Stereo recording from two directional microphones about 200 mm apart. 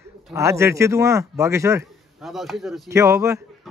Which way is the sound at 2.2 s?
Centre (ahead or behind).